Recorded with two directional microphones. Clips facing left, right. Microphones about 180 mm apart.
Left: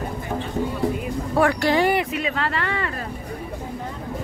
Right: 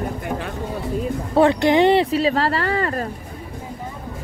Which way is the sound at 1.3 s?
20° right (ahead or behind).